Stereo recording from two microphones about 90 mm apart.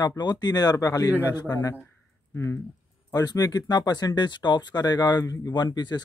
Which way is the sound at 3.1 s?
45° left (ahead or behind).